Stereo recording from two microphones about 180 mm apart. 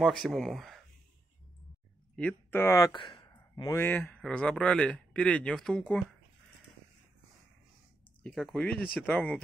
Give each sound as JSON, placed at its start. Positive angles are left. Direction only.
{"t": 0.0, "sound": "speech", "side_deg": 0}
{"t": 2.1, "sound": "speech", "side_deg": 10}
{"t": 8.2, "sound": "speech", "side_deg": 5}